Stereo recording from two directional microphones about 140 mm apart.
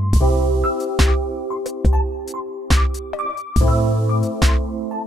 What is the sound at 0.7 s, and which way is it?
Music, centre (ahead or behind).